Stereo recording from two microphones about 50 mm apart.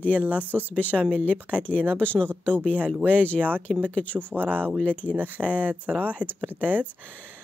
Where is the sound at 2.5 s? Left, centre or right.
Left.